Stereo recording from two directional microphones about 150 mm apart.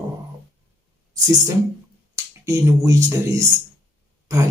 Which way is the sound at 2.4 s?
20° right (ahead or behind).